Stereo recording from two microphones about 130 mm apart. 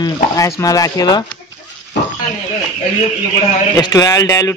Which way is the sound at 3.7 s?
25° left (ahead or behind).